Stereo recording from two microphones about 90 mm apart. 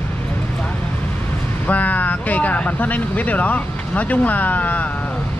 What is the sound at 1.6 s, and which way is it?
Speech, 20° left (ahead or behind).